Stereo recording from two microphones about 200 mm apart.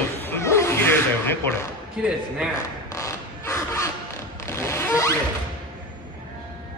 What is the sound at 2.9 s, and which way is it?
Crow, 15° left (ahead or behind).